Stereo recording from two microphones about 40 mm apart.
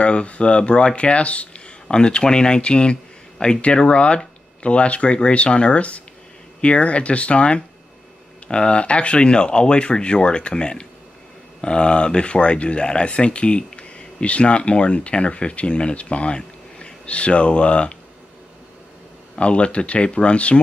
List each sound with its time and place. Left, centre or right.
0.0 s speech: left
1.9 s speech: left
19.3 s speech: left